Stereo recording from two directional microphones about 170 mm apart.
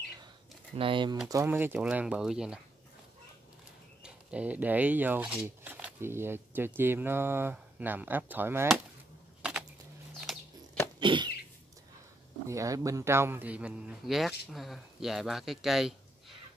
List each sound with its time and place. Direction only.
0.7 s speech: 30° right (ahead or behind)
1.3 s a man's voice: 15° right (ahead or behind)
4.0 s speech: 5° right (ahead or behind)
9.4 s a sound: 5° right (ahead or behind)
11.0 s a sound: 30° right (ahead or behind)
12.4 s a man's voice: 20° right (ahead or behind); by 15.9 s centre (ahead or behind)